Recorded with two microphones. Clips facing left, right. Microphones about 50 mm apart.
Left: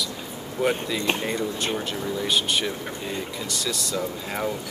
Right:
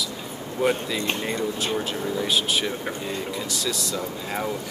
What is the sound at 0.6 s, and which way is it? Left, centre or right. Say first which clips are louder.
Speech: right 1 dB; centre.